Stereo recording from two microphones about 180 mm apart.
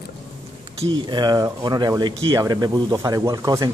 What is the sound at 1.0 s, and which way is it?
Speech, 25° right (ahead or behind).